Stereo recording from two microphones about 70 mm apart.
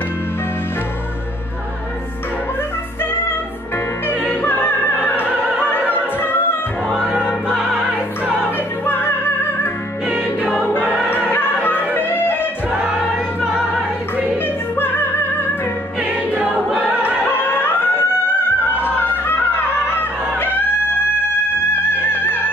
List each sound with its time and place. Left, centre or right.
4.3 s music: left
5.7 s opera: left
7.4 s music: centre
8.5 s music: left
10.0 s music: centre
11.1 s music: left
14.4 s music: left
16.0 s music: centre
16.7 s opera: right
17.4 s music: left
22.0 s music: left